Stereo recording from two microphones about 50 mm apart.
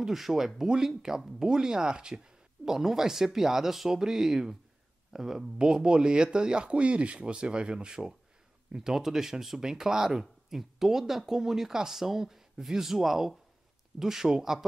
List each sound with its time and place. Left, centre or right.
0.0 s speech: centre
8.7 s speech: centre